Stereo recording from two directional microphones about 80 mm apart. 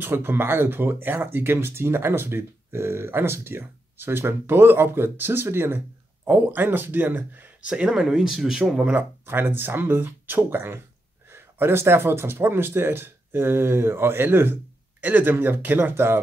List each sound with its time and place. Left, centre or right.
0.0 s speech: right
7.7 s speech: centre
8.8 s speech: right